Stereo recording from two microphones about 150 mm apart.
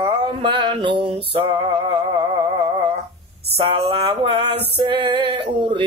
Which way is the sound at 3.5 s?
35° right (ahead or behind).